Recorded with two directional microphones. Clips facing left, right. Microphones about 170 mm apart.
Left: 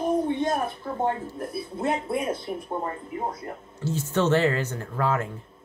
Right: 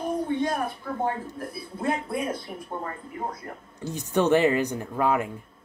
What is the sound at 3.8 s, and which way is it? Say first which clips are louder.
Speech: even; 15° right (ahead or behind).